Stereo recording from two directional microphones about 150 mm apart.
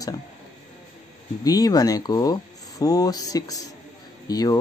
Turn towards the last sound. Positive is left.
turn(degrees=25)  # may be behind; listen again after turning